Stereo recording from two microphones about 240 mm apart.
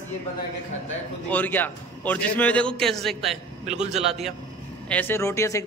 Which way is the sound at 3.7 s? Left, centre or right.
Right.